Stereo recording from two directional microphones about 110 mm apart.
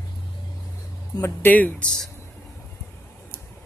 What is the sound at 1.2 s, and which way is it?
Speech, 15° left (ahead or behind).